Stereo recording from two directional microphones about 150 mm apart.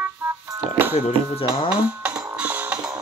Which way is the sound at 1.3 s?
35° left (ahead or behind).